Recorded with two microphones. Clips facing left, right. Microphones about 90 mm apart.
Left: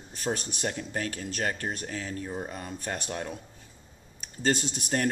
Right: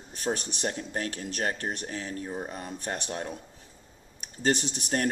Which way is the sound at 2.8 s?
30° right (ahead or behind).